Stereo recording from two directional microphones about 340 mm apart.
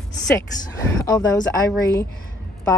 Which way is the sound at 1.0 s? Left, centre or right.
Centre.